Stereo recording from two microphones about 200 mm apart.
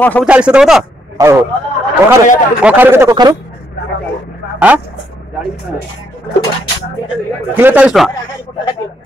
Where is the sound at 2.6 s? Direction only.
10° right (ahead or behind).